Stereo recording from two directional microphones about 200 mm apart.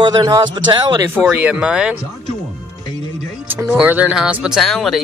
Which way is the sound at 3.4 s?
10° right (ahead or behind).